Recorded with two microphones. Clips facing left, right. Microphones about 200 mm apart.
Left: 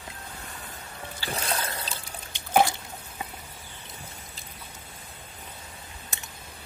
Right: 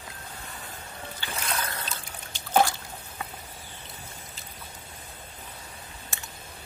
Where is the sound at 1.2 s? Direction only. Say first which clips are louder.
Left 2 dB; 30° left (ahead or behind).